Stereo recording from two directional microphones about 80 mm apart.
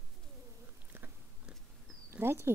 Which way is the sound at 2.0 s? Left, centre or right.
Right.